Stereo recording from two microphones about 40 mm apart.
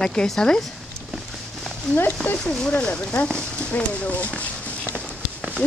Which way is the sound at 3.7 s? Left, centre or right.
Left.